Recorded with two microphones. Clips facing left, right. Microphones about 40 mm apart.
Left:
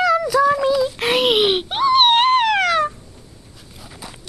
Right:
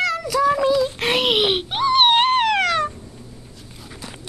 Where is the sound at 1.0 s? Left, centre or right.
Centre.